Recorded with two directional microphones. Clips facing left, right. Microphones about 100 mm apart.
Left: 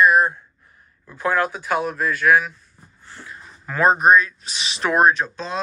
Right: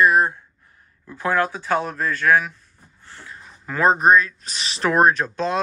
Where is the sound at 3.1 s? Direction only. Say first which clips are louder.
Left 1 dB; 25° left (ahead or behind).